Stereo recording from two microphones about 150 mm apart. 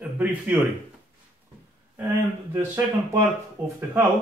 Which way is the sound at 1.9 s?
15° right (ahead or behind).